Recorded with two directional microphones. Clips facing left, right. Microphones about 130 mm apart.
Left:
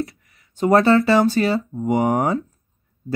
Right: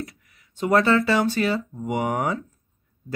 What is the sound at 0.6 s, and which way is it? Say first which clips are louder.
Speech: left 4 dB; 35° left (ahead or behind).